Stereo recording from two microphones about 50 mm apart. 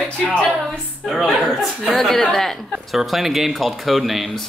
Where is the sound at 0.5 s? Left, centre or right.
Centre.